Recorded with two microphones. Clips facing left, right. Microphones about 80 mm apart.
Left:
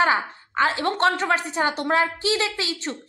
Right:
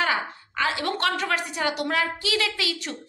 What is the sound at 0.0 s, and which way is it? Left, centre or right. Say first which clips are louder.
A woman's voice: left 5 dB; left.